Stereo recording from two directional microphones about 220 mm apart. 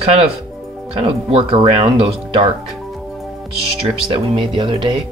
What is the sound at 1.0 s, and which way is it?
Speech, 25° right (ahead or behind).